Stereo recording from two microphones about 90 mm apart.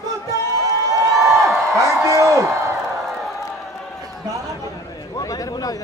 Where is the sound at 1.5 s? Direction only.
35° right (ahead or behind).